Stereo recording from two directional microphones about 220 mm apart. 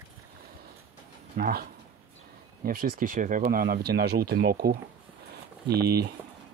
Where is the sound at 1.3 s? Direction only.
40° right (ahead or behind).